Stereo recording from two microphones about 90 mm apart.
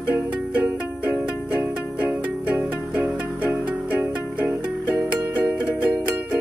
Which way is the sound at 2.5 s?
15° right (ahead or behind).